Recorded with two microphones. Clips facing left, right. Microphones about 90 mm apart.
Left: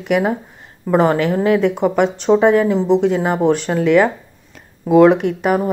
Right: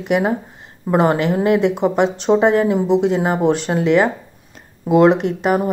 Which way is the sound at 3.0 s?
35° right (ahead or behind).